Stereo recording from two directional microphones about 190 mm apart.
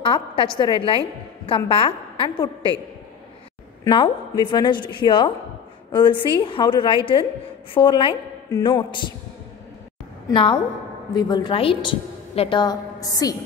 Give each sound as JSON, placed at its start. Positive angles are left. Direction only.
{"t": 0.0, "sound": "a woman's voice", "side_deg": 25}
{"t": 3.9, "sound": "a woman's voice", "side_deg": 25}
{"t": 10.3, "sound": "a woman's voice", "side_deg": 25}